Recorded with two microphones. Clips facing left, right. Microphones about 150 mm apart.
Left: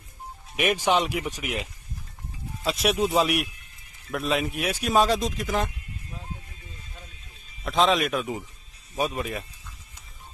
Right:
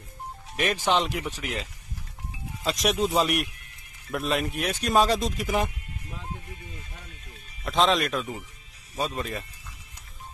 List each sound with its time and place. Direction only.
0.6 s speech: 15° left (ahead or behind)
7.6 s speech: centre (ahead or behind)